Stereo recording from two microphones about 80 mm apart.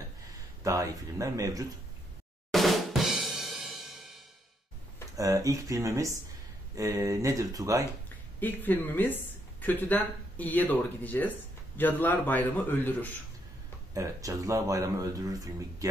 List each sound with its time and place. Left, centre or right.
0.7 s speech: right
2.5 s drum: centre
5.1 s speech: right
8.4 s speech: left
13.9 s speech: right